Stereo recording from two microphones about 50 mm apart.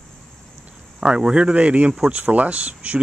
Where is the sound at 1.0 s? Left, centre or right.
Centre.